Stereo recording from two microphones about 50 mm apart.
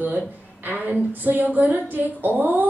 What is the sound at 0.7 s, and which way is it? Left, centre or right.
A woman's voice, right.